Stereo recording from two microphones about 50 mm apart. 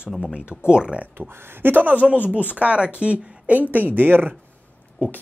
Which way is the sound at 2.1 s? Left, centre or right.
Right.